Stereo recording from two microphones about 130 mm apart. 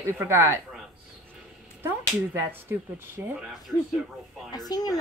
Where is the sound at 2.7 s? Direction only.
20° right (ahead or behind).